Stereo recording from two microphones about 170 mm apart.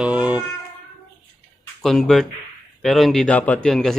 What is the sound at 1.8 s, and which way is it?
Speech, centre (ahead or behind).